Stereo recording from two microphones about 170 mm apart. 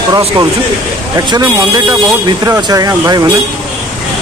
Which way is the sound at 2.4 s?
20° right (ahead or behind).